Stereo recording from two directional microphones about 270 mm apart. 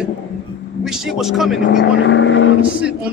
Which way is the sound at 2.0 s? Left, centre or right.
Left.